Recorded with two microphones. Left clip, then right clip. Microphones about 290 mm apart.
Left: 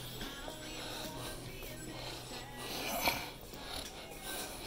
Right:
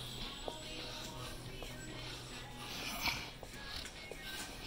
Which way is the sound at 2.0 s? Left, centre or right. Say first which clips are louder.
Left 3 dB; centre.